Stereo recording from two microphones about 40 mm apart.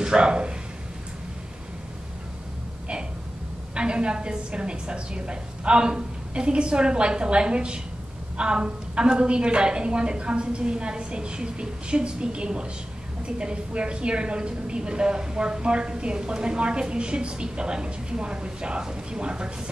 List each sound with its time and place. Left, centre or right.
0.0 s speech: right
3.7 s a woman's voice: right